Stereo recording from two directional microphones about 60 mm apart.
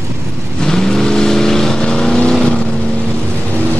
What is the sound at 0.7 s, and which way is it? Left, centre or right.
Vehicle, centre.